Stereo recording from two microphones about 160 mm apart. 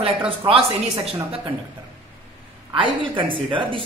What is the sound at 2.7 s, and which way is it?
Speech, 30° right (ahead or behind).